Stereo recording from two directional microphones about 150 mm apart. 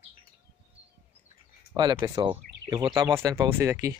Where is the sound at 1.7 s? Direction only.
25° right (ahead or behind).